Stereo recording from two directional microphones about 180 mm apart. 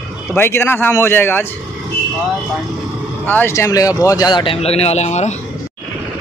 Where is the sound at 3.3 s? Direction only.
15° left (ahead or behind); by 5.4 s 40° left (ahead or behind).